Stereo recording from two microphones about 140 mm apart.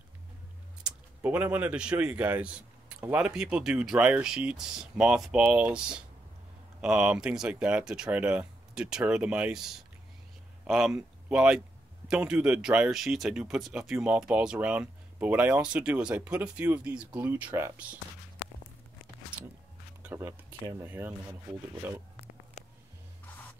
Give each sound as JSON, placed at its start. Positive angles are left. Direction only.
{"t": 0.8, "sound": "speech", "side_deg": -10}
{"t": 20.1, "sound": "a sound", "side_deg": -15}
{"t": 20.8, "sound": "speech", "side_deg": -15}